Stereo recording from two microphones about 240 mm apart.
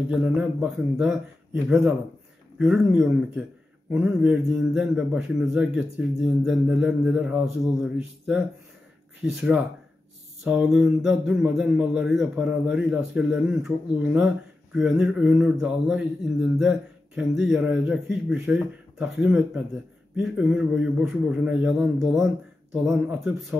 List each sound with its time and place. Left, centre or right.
0.1 s speech: centre
2.6 s speech: centre
9.2 s speech: centre